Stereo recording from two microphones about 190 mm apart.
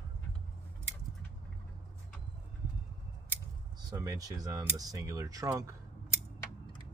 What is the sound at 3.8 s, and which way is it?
Speech, 20° right (ahead or behind).